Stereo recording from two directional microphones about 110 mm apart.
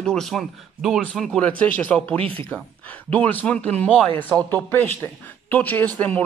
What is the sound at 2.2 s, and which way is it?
Speech, 55° right (ahead or behind).